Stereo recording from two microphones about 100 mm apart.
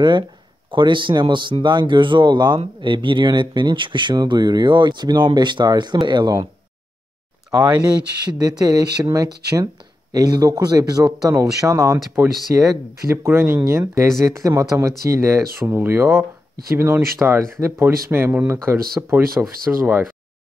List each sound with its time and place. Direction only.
0.7 s speech: 55° right (ahead or behind)
8.3 s speech: 40° right (ahead or behind)
12.5 s speech: 20° right (ahead or behind)